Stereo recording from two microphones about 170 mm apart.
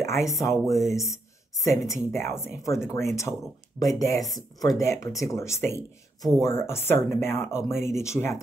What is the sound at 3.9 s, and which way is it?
Speech, 20° left (ahead or behind).